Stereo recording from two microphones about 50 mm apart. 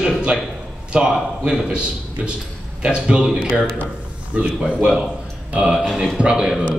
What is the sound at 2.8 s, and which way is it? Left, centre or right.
Speech, centre.